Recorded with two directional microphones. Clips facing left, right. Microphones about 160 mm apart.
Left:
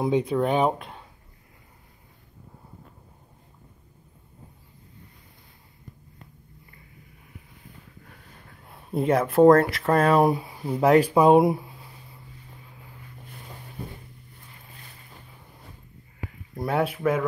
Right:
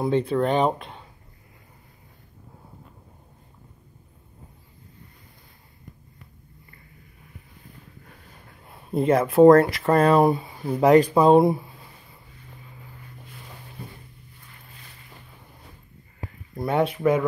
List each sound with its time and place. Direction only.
0.0 s speech: 10° left (ahead or behind)
8.5 s speech: centre (ahead or behind)
16.5 s speech: 5° left (ahead or behind)